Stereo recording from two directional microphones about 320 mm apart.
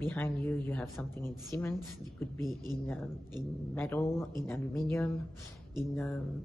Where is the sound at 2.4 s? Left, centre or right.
Centre.